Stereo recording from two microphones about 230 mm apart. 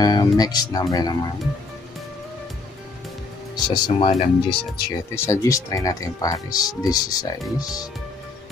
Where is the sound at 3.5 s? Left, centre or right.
Left.